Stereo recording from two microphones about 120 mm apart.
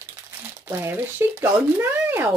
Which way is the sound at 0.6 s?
15° right (ahead or behind).